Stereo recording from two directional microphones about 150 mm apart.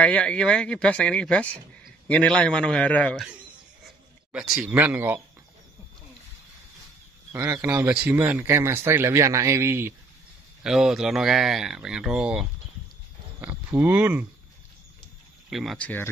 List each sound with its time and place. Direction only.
0.0 s speech: 10° left (ahead or behind)
3.8 s speech: 5° right (ahead or behind)
7.3 s speech: 15° right (ahead or behind)
10.6 s speech: 5° right (ahead or behind)
15.5 s speech: centre (ahead or behind)